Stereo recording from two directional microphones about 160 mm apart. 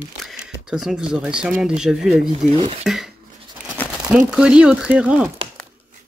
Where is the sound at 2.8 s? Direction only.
Centre (ahead or behind).